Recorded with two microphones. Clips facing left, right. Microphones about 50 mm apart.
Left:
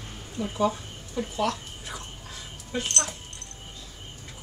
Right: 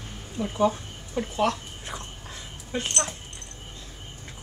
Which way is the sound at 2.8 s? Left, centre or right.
Centre.